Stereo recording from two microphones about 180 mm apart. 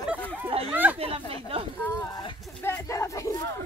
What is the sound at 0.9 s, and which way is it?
Speech, 30° right (ahead or behind).